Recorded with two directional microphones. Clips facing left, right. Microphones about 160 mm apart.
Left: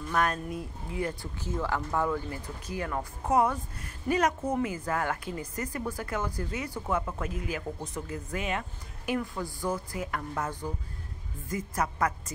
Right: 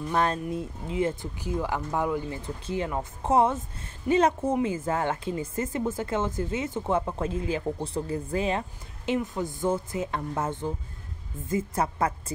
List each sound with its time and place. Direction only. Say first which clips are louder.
0.1 s speech: right 2 dB; 25° right (ahead or behind)